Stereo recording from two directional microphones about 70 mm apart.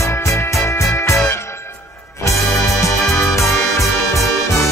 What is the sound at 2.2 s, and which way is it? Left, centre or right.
Music, left.